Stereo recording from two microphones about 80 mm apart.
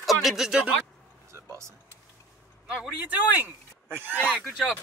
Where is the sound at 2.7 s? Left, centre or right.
Centre.